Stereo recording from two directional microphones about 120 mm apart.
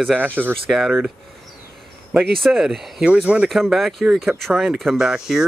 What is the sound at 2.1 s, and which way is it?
Speech, centre (ahead or behind).